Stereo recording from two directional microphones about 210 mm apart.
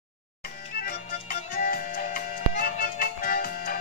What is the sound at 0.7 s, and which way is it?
Music, 45° left (ahead or behind).